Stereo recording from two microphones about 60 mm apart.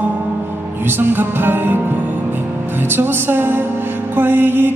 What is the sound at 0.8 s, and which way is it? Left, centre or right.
Speech, right.